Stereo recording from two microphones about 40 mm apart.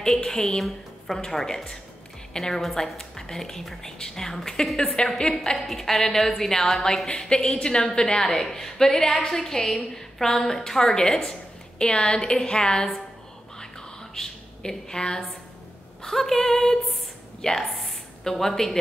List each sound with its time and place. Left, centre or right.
0.2 s a woman's voice: centre
11.8 s a woman's voice: left
13.6 s whispering: centre
16.0 s a woman's voice: centre